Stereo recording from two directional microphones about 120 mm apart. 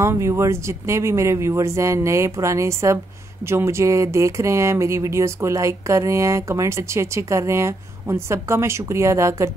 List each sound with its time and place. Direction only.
0.0 s speech: 25° right (ahead or behind)